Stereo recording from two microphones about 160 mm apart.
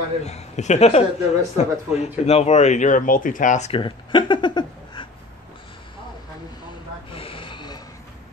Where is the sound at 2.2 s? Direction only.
45° left (ahead or behind).